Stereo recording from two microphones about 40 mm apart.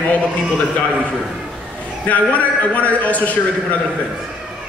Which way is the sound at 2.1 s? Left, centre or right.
Left.